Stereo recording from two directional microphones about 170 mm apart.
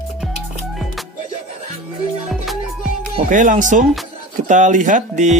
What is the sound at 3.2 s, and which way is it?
Speech, 50° right (ahead or behind).